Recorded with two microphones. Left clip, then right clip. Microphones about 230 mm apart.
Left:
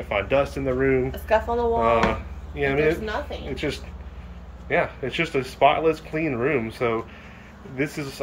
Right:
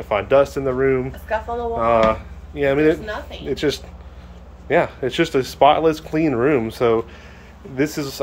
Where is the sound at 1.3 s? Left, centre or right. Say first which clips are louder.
Left 3 dB; left.